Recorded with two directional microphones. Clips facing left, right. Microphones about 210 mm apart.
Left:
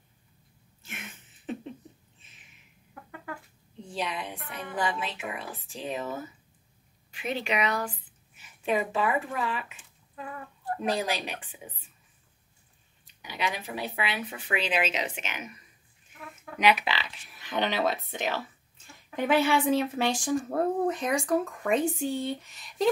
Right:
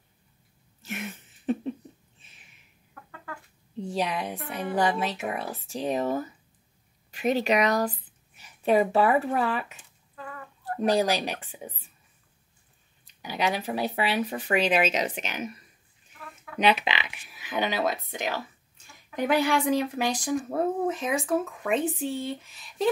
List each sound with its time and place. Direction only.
0.8 s a sound: 35° right (ahead or behind)
3.9 s a woman's voice: 40° right (ahead or behind)
10.8 s speech: 40° right (ahead or behind)
13.0 s speech: 40° right (ahead or behind)
16.5 s speech: 30° right (ahead or behind)
16.8 s speech: 15° right (ahead or behind)
17.3 s speech: 5° right (ahead or behind)
19.4 s speech: centre (ahead or behind)